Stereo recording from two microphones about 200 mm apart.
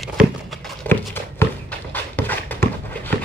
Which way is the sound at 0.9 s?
10° left (ahead or behind).